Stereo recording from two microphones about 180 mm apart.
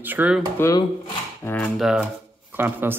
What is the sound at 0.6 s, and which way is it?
Speech, 20° left (ahead or behind).